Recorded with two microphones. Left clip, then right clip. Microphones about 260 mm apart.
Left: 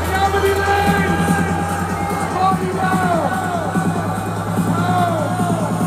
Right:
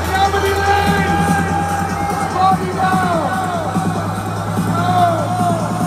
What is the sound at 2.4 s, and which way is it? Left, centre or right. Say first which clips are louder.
Music: right 3 dB; right.